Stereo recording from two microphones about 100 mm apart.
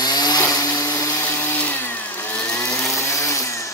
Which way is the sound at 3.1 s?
30° left (ahead or behind).